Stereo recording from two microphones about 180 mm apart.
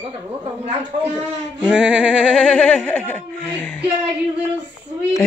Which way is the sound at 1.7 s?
5° right (ahead or behind).